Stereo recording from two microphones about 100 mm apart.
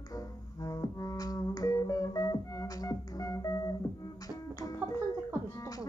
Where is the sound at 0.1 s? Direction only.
35° left (ahead or behind).